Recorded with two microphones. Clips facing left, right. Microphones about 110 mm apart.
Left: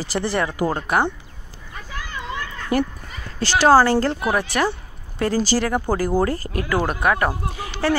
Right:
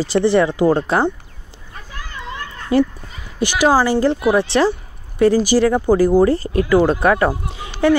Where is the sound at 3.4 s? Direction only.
15° right (ahead or behind).